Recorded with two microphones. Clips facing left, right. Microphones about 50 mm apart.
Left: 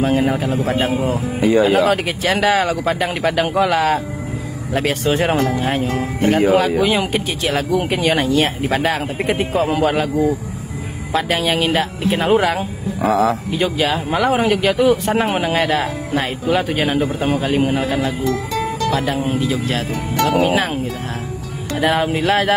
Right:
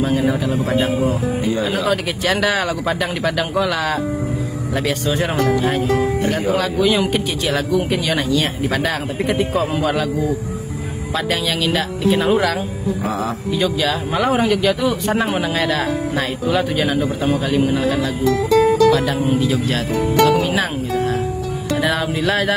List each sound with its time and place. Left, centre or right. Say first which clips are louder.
0.0 s speech: left 1 dB; left
1.4 s speech: left 10 dB; left
2.4 s speech: left 3 dB; centre
4.7 s speech: left 3 dB; left
6.2 s speech: left 5 dB; left
6.8 s speech: right 1 dB; left
11.2 s speech: left 1 dB; left
13.0 s speech: left 10 dB; left
13.6 s speech: right 2 dB; left
14.3 s speech: right 1 dB; left
16.9 s speech: even; left
19.0 s speech: right 1 dB; centre